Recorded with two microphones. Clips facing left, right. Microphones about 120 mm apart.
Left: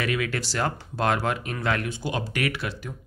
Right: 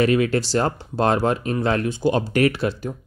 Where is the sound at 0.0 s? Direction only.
35° right (ahead or behind).